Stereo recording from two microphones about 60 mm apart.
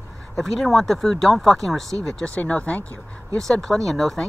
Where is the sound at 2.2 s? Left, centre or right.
Left.